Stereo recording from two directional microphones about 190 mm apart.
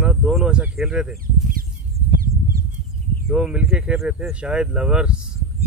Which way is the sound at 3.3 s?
5° right (ahead or behind).